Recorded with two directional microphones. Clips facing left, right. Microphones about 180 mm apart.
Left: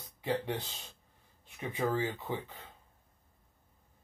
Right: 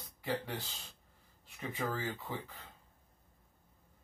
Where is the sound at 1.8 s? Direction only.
20° left (ahead or behind).